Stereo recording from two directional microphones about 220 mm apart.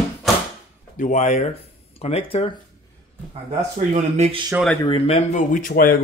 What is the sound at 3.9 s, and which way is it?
Speech, 30° right (ahead or behind).